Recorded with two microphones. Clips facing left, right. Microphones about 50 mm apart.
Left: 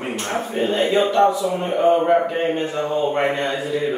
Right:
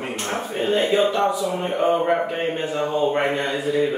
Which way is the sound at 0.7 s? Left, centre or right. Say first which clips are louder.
Left 2 dB; centre.